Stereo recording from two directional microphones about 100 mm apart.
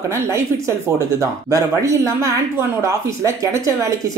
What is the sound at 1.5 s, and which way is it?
Speech, 30° right (ahead or behind).